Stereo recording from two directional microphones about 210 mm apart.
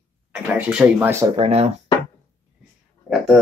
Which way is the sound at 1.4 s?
30° right (ahead or behind).